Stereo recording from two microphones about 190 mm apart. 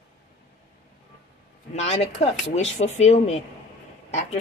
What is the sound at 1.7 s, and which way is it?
Speech, 35° left (ahead or behind).